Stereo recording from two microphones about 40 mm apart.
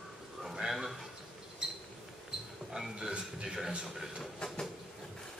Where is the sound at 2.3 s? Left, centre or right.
Centre.